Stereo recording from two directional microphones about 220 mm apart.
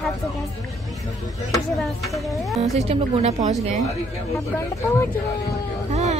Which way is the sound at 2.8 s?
30° right (ahead or behind).